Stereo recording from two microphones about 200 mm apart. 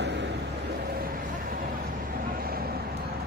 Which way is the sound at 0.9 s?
50° right (ahead or behind).